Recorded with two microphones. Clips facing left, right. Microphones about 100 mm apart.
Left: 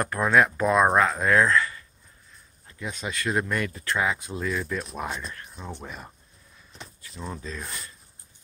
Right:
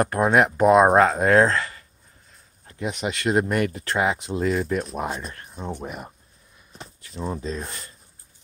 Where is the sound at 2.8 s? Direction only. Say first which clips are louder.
Right 5 dB; 20° right (ahead or behind).